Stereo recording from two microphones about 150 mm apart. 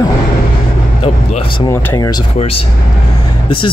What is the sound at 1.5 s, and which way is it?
Speech, 25° left (ahead or behind).